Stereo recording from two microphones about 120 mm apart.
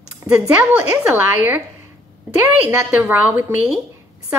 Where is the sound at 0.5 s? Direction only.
10° right (ahead or behind).